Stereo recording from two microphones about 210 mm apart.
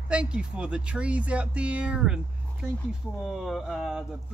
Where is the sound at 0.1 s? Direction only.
5° right (ahead or behind).